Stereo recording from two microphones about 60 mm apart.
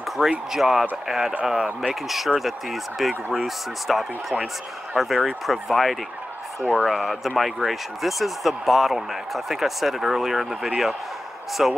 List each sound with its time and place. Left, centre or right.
0.5 s speech: centre
6.6 s speech: centre
6.9 s speech: centre